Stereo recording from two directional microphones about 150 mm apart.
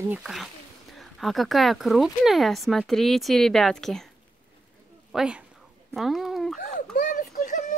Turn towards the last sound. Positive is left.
turn(degrees=55)  # may be behind; listen again after turning